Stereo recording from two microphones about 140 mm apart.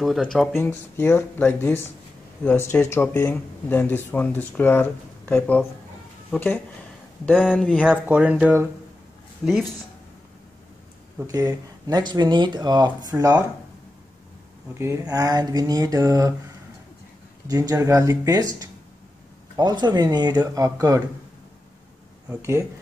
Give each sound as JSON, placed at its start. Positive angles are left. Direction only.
{"t": 0.0, "sound": "speech", "side_deg": 0}
{"t": 0.6, "sound": "speech", "side_deg": 15}
{"t": 7.8, "sound": "speech", "side_deg": -10}
{"t": 9.4, "sound": "speech", "side_deg": 0}
{"t": 11.2, "sound": "speech", "side_deg": -25}
{"t": 14.7, "sound": "speech", "side_deg": -20}
{"t": 17.5, "sound": "speech", "side_deg": -25}
{"t": 22.3, "sound": "speech", "side_deg": -20}